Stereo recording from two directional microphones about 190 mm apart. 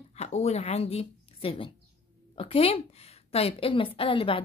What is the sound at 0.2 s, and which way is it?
A woman's voice, 35° left (ahead or behind).